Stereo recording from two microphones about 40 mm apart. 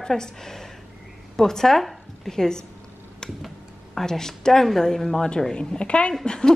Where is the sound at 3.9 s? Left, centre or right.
Centre.